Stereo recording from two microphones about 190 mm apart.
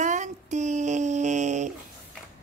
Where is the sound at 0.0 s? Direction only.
40° right (ahead or behind).